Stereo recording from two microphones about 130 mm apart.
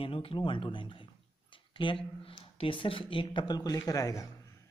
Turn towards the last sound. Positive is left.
turn(degrees=25)  # may be behind; listen again after turning